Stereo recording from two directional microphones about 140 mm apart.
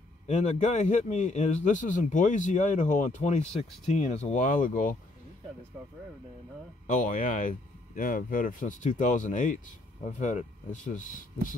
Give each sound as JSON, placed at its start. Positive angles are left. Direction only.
{"t": 0.3, "sound": "a man's voice", "side_deg": 60}
{"t": 6.9, "sound": "a man's voice", "side_deg": 70}